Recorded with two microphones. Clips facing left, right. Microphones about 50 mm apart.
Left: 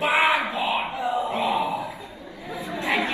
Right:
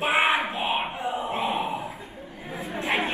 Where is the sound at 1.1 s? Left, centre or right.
Right.